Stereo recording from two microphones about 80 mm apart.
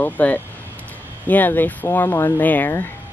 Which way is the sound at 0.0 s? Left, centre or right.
Centre.